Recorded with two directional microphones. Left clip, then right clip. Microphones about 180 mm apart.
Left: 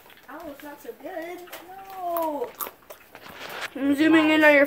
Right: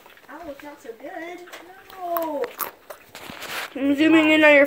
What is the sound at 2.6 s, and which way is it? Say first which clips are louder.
Speech: right 4 dB; 30° right (ahead or behind).